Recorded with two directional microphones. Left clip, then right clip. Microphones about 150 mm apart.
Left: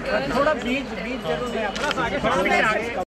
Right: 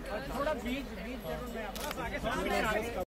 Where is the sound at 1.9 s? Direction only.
10° right (ahead or behind).